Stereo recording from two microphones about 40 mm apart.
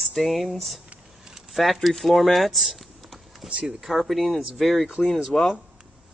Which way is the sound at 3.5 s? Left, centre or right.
Right.